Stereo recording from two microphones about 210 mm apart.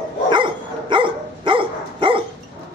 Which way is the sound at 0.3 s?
20° right (ahead or behind).